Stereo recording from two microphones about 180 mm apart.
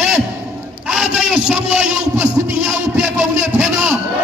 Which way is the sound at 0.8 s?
Centre (ahead or behind).